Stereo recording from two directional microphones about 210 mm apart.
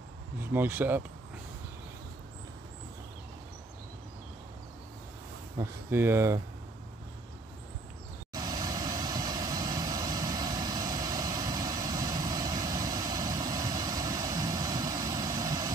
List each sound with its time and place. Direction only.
0.4 s speech: 10° right (ahead or behind)
5.6 s speech: 10° right (ahead or behind)
8.3 s vehicle: 20° right (ahead or behind)